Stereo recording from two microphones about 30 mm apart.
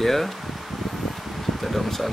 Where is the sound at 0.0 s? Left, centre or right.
Centre.